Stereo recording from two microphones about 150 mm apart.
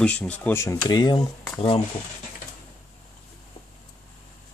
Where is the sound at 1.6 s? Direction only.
40° left (ahead or behind).